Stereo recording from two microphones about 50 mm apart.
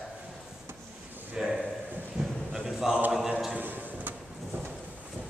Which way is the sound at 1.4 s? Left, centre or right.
Centre.